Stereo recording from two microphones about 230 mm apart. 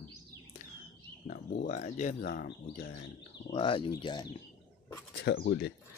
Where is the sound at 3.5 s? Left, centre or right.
Left.